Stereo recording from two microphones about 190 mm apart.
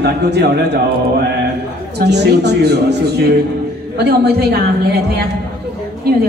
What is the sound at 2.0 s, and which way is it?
Speech, 60° right (ahead or behind).